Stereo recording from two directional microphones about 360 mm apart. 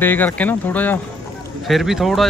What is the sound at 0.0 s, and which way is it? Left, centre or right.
Speech, centre.